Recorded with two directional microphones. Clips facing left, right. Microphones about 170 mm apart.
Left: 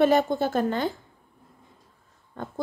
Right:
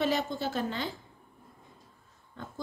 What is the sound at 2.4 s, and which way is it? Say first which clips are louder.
Pig: left 8 dB; 50° left (ahead or behind).